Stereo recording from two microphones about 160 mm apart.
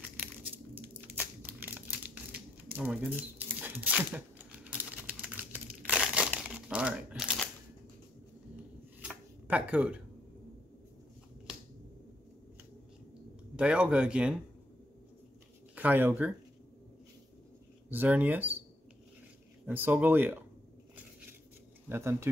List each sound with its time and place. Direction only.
0.7 s crumpling: 10° right (ahead or behind)
9.0 s a sound: 5° right (ahead or behind)
13.6 s speech: 5° right (ahead or behind)
15.7 s speech: 10° right (ahead or behind)
17.8 s speech: 10° right (ahead or behind)
19.6 s speech: 10° right (ahead or behind)
20.9 s a sound: 10° right (ahead or behind)
21.8 s speech: 15° right (ahead or behind)